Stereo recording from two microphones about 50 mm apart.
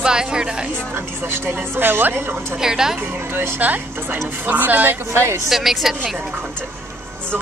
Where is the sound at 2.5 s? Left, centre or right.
Centre.